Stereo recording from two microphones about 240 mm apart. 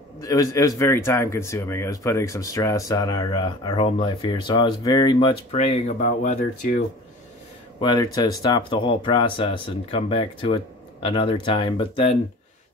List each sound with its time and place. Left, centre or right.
0.2 s speech: centre; by 6.8 s left
7.8 s speech: centre